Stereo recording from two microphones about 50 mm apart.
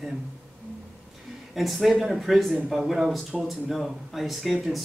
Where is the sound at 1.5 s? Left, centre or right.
Centre.